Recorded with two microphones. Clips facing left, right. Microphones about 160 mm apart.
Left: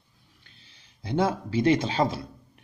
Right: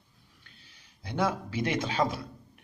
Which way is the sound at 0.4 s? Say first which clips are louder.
Right 1 dB; 25° left (ahead or behind).